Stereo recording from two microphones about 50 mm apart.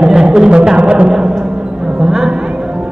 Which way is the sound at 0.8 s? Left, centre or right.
Centre.